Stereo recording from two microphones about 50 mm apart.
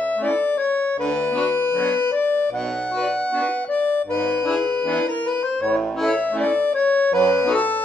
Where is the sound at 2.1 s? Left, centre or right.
Left.